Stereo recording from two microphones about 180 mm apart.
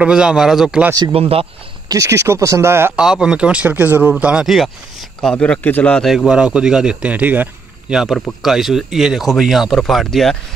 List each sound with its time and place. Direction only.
0.0 s a man's voice: 5° right (ahead or behind)
0.9 s a man's voice: 20° right (ahead or behind); by 10.3 s centre (ahead or behind)